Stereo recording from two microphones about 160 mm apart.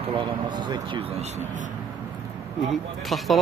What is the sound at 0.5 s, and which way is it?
Speech, 30° right (ahead or behind).